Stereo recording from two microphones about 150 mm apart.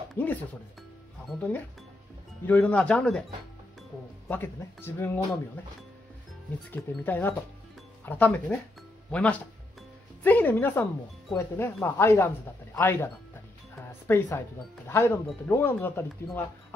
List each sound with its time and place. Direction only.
0.1 s speech: 10° left (ahead or behind)
2.4 s speech: 10° left (ahead or behind)
4.3 s speech: 15° left (ahead or behind)
6.7 s speech: 15° left (ahead or behind)